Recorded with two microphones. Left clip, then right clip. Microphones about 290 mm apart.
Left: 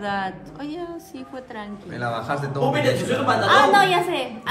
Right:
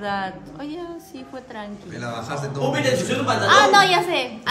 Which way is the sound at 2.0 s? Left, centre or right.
Centre.